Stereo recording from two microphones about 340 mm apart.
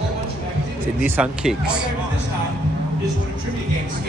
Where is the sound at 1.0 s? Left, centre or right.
Centre.